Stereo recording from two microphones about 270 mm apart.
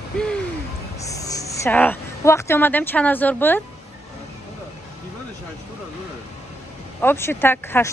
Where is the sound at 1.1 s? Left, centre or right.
Centre.